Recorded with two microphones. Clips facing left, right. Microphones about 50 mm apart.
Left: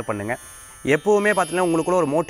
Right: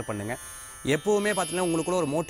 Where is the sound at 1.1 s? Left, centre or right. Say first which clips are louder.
Left 7 dB; left.